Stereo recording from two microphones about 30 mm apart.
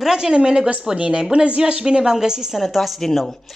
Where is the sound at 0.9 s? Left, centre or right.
Right.